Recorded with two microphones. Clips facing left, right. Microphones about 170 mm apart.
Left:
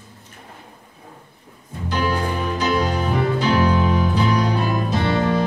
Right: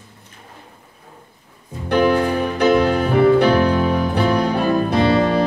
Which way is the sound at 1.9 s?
55° right (ahead or behind).